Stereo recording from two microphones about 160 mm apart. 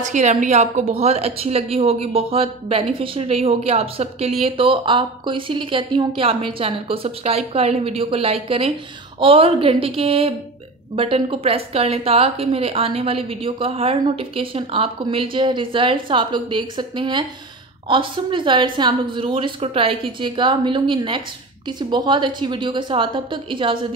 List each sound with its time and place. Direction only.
0.0 s a woman's voice: 50° right (ahead or behind); by 23.9 s 30° right (ahead or behind)